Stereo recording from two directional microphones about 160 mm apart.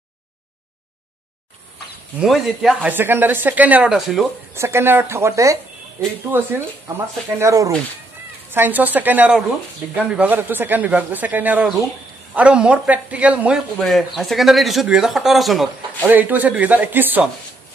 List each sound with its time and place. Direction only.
2.1 s speech: centre (ahead or behind)
4.6 s speech: 15° right (ahead or behind)
16.1 s speech: 10° right (ahead or behind)